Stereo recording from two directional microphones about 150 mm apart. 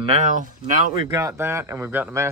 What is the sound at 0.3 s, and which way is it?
Speech, 60° right (ahead or behind).